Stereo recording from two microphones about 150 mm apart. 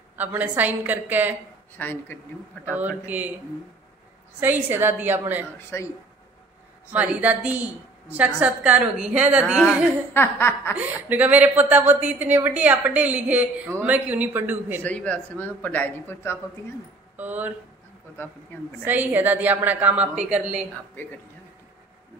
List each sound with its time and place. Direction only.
0.1 s a woman's voice: 10° right (ahead or behind)
1.8 s speech: 15° left (ahead or behind)
2.7 s a woman's voice: 10° right (ahead or behind)
4.4 s a woman's voice: 15° right (ahead or behind)
5.7 s speech: 15° left (ahead or behind)
6.9 s a woman's voice: 10° right (ahead or behind)
10.1 s speech: 15° left (ahead or behind)
10.7 s a woman's voice: 10° right (ahead or behind)
14.8 s speech: 10° left (ahead or behind)
17.2 s a woman's voice: 10° right (ahead or behind)
18.1 s speech: 15° left (ahead or behind)
18.9 s a woman's voice: 10° right (ahead or behind)